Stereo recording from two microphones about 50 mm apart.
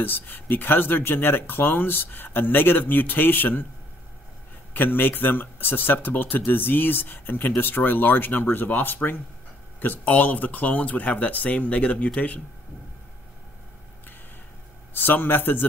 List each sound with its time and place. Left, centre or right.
0.0 s speech: left
4.7 s speech: left
15.0 s speech: left